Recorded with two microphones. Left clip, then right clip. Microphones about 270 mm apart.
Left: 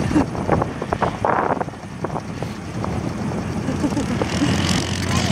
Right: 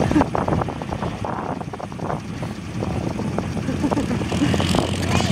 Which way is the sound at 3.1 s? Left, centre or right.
Centre.